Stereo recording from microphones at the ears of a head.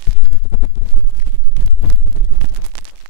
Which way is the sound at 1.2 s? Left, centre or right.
Right.